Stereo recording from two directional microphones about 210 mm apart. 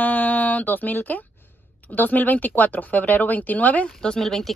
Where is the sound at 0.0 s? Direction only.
10° left (ahead or behind).